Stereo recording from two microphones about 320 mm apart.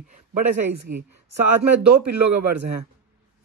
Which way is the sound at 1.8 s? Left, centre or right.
Right.